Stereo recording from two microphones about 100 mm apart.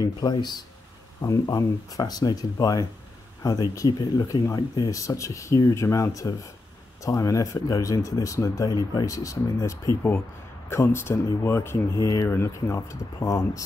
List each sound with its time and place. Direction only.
0.0 s speech: 40° left (ahead or behind)